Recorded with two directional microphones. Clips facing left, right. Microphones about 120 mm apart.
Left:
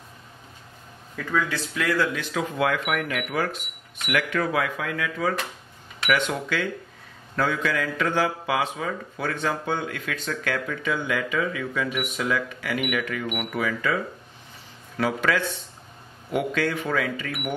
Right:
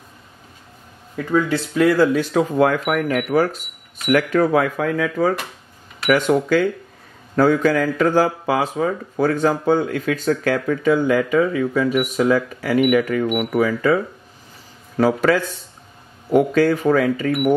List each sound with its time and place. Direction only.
1.1 s speech: 25° right (ahead or behind)
15.0 s speech: 40° right (ahead or behind)